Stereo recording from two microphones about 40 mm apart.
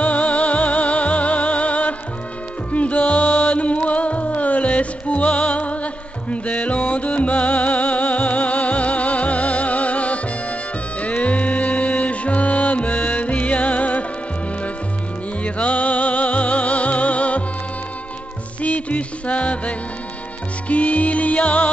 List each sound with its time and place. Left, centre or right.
0.0 s music: left
15.4 s music: left
18.6 s music: left